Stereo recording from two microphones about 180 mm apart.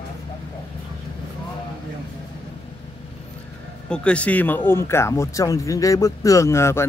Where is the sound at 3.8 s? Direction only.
5° left (ahead or behind).